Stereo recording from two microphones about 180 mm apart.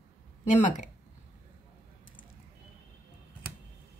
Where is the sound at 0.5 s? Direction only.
45° left (ahead or behind).